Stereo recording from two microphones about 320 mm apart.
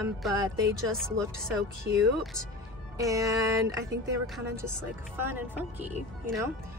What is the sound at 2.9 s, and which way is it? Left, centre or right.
Music, centre.